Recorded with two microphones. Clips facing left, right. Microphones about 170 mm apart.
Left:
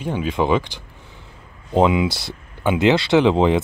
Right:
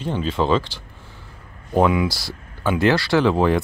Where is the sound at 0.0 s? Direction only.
10° left (ahead or behind).